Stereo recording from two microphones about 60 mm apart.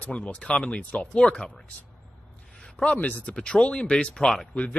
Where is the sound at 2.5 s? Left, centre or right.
Centre.